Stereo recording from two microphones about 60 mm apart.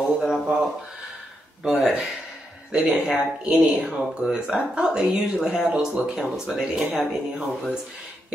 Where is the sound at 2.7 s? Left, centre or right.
Centre.